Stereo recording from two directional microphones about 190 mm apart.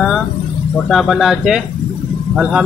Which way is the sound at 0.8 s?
Centre (ahead or behind).